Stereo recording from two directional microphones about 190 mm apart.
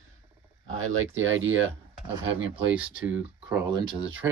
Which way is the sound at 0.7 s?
90° right.